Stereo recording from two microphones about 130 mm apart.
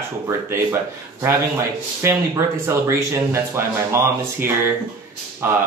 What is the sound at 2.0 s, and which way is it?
Speech, 20° right (ahead or behind).